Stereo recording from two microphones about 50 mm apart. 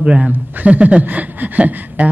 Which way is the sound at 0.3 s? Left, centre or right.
Right.